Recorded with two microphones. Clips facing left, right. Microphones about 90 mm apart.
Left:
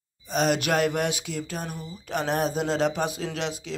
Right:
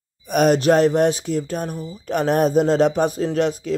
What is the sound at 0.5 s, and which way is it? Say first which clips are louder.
Speech: right 9 dB; 35° right (ahead or behind).